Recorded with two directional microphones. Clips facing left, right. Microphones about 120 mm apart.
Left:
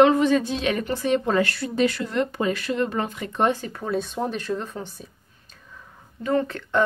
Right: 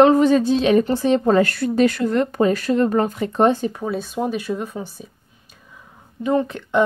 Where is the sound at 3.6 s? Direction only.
15° right (ahead or behind).